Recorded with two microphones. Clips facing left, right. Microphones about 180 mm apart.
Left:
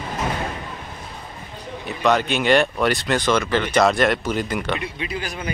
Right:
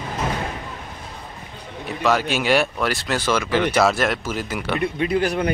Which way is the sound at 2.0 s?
5° right (ahead or behind).